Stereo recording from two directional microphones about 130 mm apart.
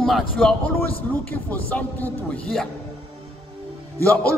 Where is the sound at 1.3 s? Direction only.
15° left (ahead or behind).